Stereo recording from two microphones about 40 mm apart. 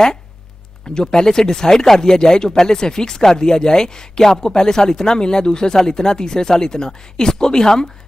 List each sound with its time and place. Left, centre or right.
0.9 s speech: centre